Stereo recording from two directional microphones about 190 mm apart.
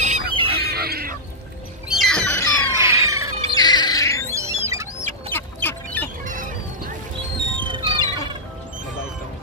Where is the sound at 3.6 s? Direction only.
20° left (ahead or behind).